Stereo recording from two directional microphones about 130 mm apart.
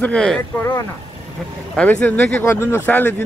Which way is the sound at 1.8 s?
10° left (ahead or behind).